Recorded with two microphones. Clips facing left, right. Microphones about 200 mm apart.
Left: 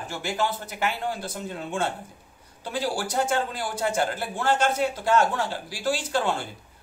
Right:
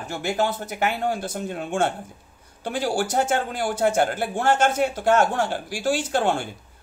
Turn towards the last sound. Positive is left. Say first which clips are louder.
# right 4 dB
turn(degrees=-50)  # may be behind; listen again after turning